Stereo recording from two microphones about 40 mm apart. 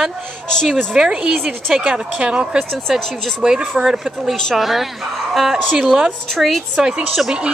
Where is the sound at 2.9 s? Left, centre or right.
Centre.